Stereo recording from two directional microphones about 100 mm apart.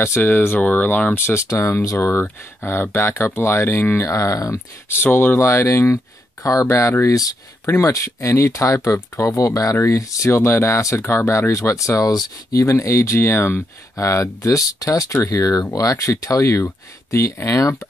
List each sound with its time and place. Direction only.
0.0 s speech: 25° left (ahead or behind)